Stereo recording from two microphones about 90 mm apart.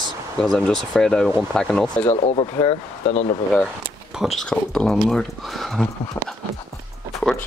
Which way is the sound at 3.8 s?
5° right (ahead or behind).